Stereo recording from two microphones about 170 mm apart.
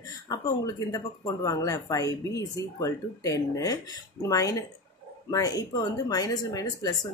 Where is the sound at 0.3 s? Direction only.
20° left (ahead or behind).